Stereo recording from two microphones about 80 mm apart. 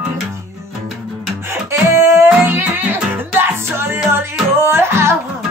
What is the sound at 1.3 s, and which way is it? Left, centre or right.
Music, right.